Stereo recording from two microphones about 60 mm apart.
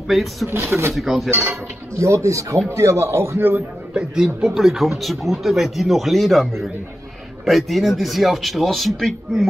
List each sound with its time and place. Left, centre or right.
0.1 s speech: centre
0.5 s speech: right
0.9 s speech: centre
2.0 s speech: right
2.7 s speech: right
3.9 s a man's voice: centre
4.5 s speech: centre